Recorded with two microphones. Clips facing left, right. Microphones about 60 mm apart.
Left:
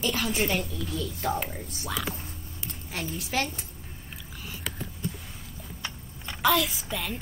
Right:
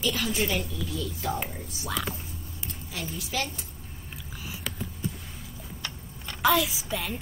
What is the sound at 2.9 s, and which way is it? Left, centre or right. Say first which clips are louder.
Speech: left 2 dB; left.